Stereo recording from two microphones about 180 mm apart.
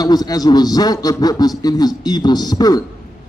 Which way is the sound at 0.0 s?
20° left (ahead or behind).